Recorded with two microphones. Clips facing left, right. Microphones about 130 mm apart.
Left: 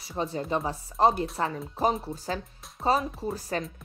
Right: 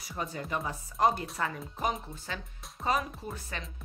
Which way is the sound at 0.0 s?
30° left (ahead or behind).